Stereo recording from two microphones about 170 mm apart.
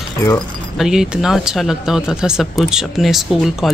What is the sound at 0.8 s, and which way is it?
Speech, 5° right (ahead or behind).